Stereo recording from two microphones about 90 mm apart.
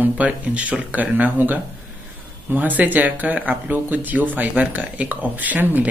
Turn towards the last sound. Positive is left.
turn(degrees=-20)  # may be behind; listen again after turning